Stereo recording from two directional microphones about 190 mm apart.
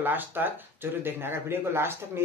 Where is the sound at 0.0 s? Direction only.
10° right (ahead or behind).